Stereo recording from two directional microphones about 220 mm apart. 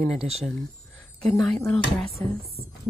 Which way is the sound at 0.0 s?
Centre (ahead or behind).